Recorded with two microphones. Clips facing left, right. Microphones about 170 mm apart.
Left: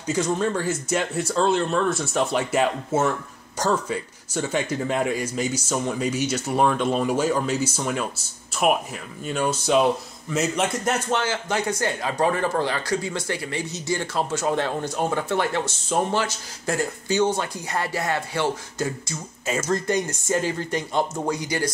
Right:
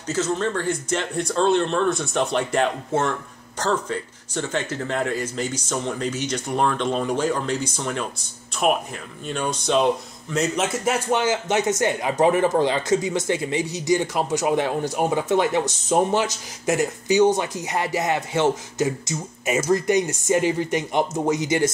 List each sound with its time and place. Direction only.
0.0 s speech: 15° left (ahead or behind); by 21.6 s 20° right (ahead or behind)